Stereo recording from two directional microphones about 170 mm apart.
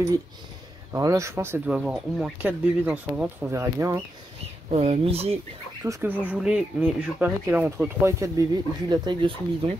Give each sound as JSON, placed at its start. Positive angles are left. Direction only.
{"t": 0.9, "sound": "speech", "side_deg": -20}
{"t": 4.6, "sound": "speech", "side_deg": -40}
{"t": 5.9, "sound": "speech", "side_deg": -15}
{"t": 6.2, "sound": "speech", "side_deg": -5}